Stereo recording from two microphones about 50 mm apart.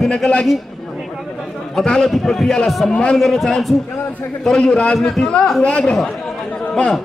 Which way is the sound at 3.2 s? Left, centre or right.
Centre.